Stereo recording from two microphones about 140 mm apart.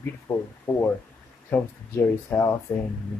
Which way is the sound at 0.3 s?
10° left (ahead or behind).